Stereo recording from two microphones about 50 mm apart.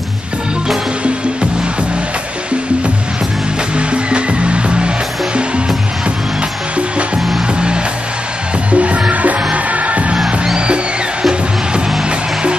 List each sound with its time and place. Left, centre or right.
3.7 s music: right
7.5 s music: centre
10.1 s music: centre